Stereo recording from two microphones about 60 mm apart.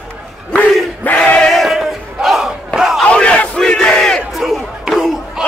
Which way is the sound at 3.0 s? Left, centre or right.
Left.